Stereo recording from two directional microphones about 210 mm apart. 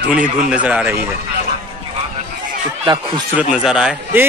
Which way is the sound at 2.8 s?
20° right (ahead or behind).